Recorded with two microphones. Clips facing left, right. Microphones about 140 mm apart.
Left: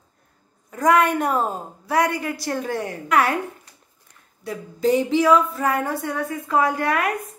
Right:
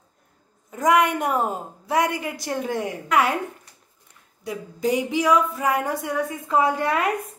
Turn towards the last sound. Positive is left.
turn(degrees=-20)  # may be behind; listen again after turning